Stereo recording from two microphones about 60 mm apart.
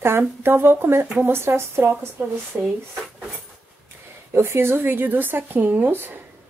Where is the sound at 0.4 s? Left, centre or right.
Right.